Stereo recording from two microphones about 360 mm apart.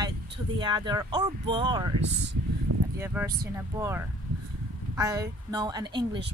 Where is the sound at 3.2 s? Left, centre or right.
Centre.